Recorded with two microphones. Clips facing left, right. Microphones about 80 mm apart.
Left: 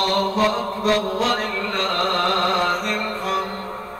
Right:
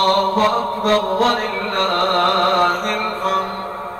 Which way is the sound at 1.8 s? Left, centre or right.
Right.